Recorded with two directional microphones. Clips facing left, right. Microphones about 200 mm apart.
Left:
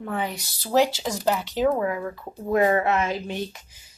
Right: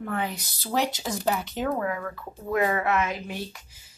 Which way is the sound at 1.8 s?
20° left (ahead or behind).